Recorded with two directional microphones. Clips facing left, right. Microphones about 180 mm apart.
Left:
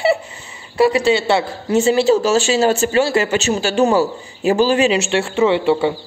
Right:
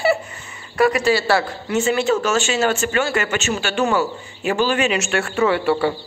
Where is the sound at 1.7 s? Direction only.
35° left (ahead or behind).